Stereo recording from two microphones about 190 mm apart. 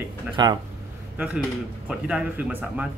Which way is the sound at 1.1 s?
5° right (ahead or behind).